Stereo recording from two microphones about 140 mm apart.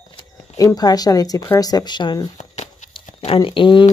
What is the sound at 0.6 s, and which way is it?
Speech, 25° left (ahead or behind).